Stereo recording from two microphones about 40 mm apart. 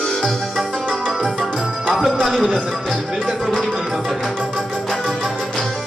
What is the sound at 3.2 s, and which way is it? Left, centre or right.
Music, centre.